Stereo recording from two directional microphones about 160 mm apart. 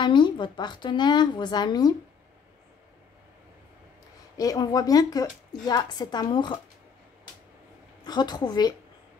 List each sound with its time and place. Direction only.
0.0 s a woman's voice: 30° left (ahead or behind)
4.4 s a woman's voice: 20° left (ahead or behind)
8.0 s a woman's voice: 25° left (ahead or behind)